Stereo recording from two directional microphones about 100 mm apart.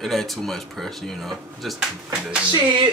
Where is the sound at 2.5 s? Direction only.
50° right (ahead or behind).